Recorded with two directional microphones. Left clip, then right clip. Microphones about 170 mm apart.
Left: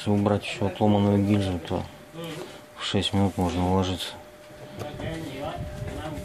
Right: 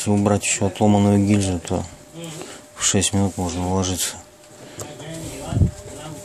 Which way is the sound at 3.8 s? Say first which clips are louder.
Right 5 dB; 30° right (ahead or behind).